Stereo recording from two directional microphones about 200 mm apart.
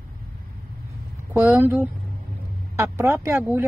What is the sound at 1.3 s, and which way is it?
Speech, 10° right (ahead or behind).